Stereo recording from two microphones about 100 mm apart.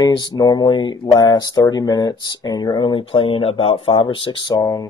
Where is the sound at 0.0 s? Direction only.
40° left (ahead or behind); by 4.6 s 60° left (ahead or behind).